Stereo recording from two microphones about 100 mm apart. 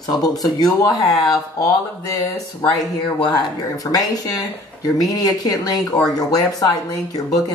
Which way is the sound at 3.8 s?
40° left (ahead or behind).